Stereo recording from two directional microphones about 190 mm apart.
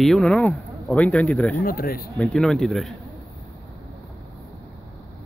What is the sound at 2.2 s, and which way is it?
Speech, centre (ahead or behind).